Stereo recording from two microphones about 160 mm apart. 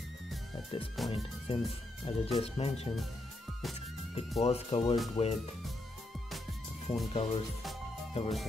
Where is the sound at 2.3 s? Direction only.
40° left (ahead or behind).